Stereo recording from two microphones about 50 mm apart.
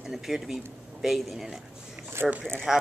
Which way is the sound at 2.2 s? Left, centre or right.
Right.